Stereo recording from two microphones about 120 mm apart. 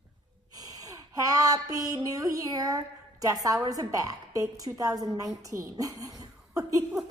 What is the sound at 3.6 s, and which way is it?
Speech, 30° right (ahead or behind).